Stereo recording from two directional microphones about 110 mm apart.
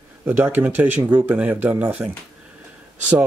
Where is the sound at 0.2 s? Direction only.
20° right (ahead or behind).